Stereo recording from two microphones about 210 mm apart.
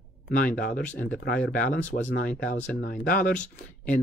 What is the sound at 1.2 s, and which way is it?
Speech, 45° left (ahead or behind).